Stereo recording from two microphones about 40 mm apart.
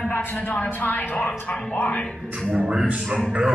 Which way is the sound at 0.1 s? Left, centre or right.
Left.